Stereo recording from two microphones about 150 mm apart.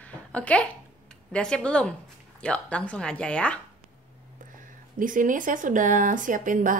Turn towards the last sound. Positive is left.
turn(degrees=-60)  # may be behind; listen again after turning